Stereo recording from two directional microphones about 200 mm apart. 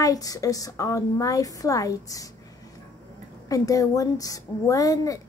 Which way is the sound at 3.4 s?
15° left (ahead or behind).